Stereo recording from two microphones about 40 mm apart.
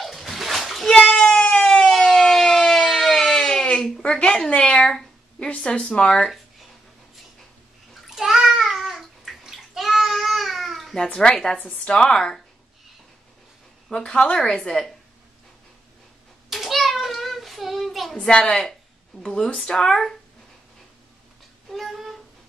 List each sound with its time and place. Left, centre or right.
0.0 s splash: centre
0.8 s a sound: centre
1.3 s siren: left
1.6 s siren: centre
2.0 s a sound: centre
4.1 s a woman's voice: centre
8.1 s bathtub: centre
11.1 s speech: centre
11.5 s a woman's voice: left
13.9 s a woman's voice: left
16.4 s a sound: centre
19.2 s speech: centre
21.6 s a sound: centre